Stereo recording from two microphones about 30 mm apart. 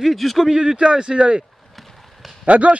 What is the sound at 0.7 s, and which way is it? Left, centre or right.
Speech, right.